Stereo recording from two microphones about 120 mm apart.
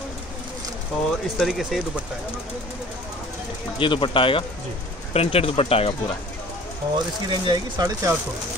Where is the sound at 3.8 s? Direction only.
45° left (ahead or behind).